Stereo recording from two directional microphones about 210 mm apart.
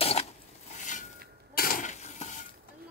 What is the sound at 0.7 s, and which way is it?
Mechanisms, 35° left (ahead or behind).